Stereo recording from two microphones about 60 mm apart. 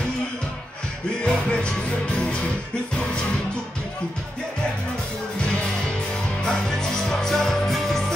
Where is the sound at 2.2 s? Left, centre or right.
Centre.